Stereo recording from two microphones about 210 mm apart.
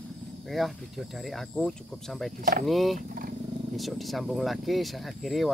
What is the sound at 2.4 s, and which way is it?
Speech, 45° right (ahead or behind).